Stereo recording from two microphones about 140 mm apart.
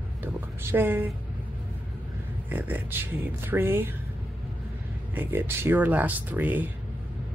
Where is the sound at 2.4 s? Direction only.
15° right (ahead or behind).